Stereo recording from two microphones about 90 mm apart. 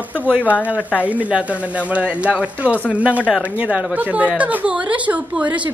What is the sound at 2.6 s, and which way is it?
A woman's voice, 15° right (ahead or behind).